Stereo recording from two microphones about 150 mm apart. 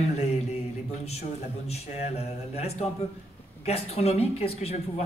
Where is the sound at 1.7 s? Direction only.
45° left (ahead or behind).